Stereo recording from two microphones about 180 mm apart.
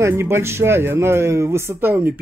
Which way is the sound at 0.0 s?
15° right (ahead or behind).